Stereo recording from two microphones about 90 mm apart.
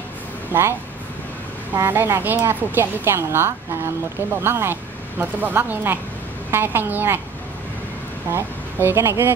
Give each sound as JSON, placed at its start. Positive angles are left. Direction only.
{"t": 0.5, "sound": "a woman's voice", "side_deg": -25}
{"t": 8.3, "sound": "a woman's voice", "side_deg": -25}